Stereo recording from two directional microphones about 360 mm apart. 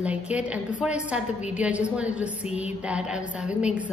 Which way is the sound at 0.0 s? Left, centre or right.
Centre.